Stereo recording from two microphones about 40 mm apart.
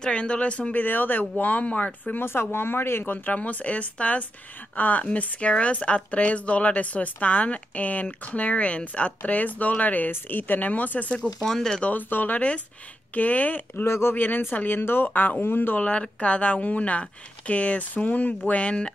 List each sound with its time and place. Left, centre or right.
0.0 s speech: left
0.7 s speech: left
2.1 s speech: left
3.3 s speech: left
5.1 s speech: left
11.4 s speech: centre
11.8 s speech: left
14.1 s speech: left
14.8 s speech: left
15.0 s speech: left
15.4 s speech: left
15.8 s speech: left
17.9 s speech: left
18.5 s speech: left